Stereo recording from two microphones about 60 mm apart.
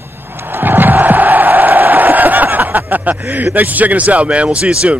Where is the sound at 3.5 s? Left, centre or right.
Right.